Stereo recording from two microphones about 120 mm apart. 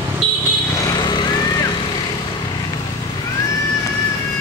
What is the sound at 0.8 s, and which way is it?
Vehicle, 35° left (ahead or behind).